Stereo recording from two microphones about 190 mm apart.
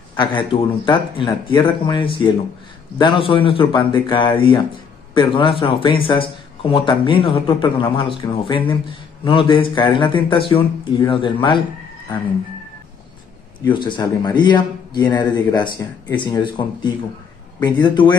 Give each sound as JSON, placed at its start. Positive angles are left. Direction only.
{"t": 0.1, "sound": "speech", "side_deg": 25}
{"t": 13.7, "sound": "speech", "side_deg": 25}